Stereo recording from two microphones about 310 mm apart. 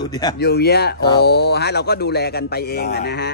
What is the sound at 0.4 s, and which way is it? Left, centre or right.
A man's voice, left.